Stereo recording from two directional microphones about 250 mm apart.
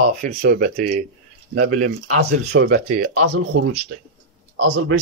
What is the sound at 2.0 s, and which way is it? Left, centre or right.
Speech, right.